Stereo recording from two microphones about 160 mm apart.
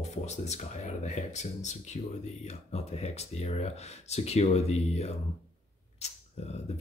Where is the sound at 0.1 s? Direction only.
45° left (ahead or behind).